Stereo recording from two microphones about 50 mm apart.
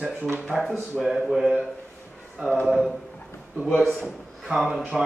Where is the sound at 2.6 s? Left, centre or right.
Centre.